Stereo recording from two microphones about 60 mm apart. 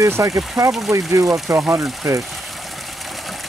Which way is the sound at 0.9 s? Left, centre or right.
Right.